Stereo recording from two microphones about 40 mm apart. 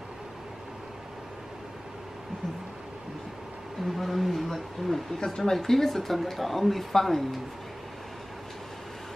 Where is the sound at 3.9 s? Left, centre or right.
Centre.